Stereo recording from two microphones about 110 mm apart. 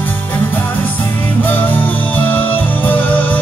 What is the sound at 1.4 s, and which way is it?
Music, 15° left (ahead or behind).